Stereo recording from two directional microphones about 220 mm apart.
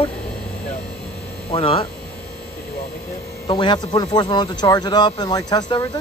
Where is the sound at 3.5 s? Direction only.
20° left (ahead or behind).